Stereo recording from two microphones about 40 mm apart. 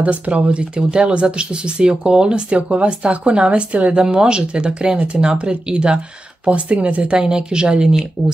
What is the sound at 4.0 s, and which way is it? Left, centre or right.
A woman's voice, right.